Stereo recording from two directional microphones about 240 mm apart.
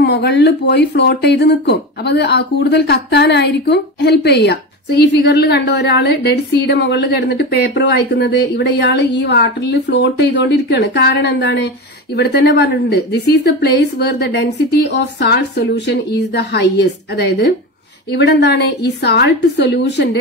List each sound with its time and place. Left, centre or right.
0.0 s speech: left